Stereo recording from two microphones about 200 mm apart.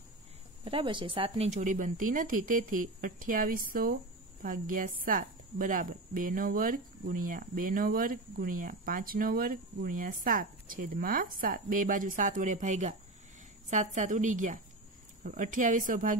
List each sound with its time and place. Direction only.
0.7 s a woman's voice: 25° right (ahead or behind); by 16.2 s 40° right (ahead or behind)